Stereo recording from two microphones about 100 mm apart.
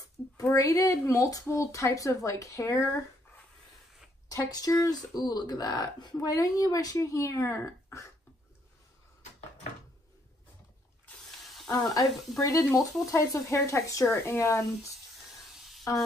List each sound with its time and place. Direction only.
0.0 s a woman's voice: 35° left (ahead or behind)
4.3 s a woman's voice: 40° left (ahead or behind)
11.4 s a sound: centre (ahead or behind)
11.7 s a woman's voice: 40° left (ahead or behind)
15.9 s a woman's voice: 30° left (ahead or behind)